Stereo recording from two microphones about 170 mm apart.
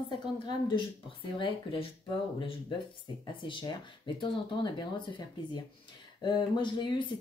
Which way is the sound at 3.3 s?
30° left (ahead or behind).